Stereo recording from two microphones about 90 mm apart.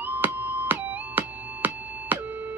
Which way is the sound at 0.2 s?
20° right (ahead or behind).